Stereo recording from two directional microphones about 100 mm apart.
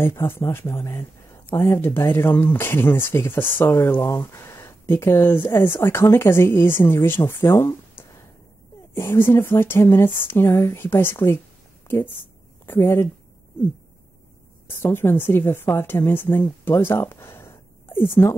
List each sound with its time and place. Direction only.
0.0 s speech: 25° left (ahead or behind)
12.6 s speech: 25° left (ahead or behind)
14.8 s speech: 25° left (ahead or behind)